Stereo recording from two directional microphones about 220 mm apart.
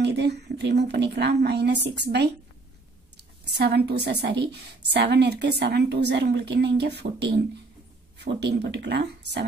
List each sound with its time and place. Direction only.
0.0 s a woman's voice: 50° right (ahead or behind)